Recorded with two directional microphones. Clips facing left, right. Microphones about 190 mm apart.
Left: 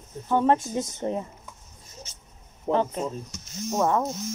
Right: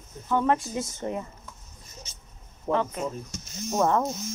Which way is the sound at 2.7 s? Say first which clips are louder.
Left 2 dB; 30° left (ahead or behind).